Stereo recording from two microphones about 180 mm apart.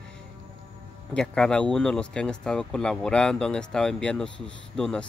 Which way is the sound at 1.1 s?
5° left (ahead or behind).